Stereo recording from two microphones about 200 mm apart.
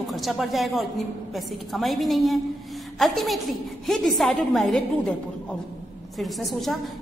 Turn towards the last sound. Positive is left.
turn(degrees=0)  # may be behind; listen again after turning